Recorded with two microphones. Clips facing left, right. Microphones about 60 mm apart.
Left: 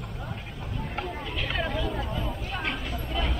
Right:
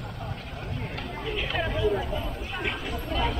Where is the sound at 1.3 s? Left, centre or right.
Centre.